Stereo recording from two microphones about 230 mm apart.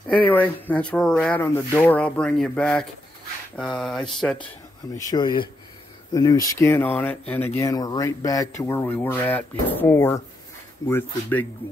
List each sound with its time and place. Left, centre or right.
0.1 s speech: centre
4.9 s speech: centre